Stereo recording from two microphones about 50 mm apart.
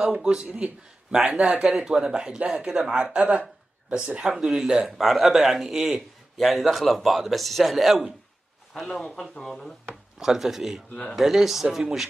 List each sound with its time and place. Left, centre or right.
0.0 s a man's voice: centre
4.8 s a man's voice: centre
8.8 s speech: centre
10.1 s speech: centre